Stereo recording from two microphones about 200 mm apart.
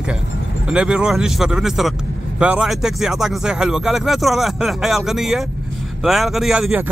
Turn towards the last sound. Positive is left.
turn(degrees=-5)  # may be behind; listen again after turning